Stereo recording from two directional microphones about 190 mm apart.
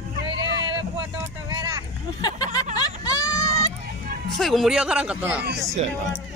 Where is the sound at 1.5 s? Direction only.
20° right (ahead or behind).